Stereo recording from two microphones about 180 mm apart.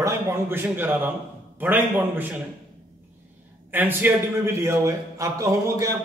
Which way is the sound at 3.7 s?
10° right (ahead or behind).